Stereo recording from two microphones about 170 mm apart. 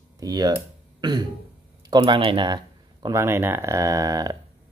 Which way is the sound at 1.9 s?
30° right (ahead or behind).